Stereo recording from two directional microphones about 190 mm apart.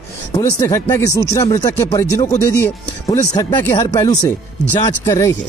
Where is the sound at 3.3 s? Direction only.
20° left (ahead or behind).